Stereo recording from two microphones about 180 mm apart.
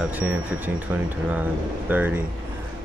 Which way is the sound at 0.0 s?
10° right (ahead or behind).